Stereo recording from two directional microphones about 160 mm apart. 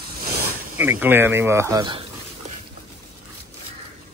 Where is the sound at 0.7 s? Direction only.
10° right (ahead or behind); by 2.0 s 30° right (ahead or behind).